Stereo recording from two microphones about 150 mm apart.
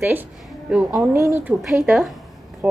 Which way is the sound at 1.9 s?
Centre (ahead or behind).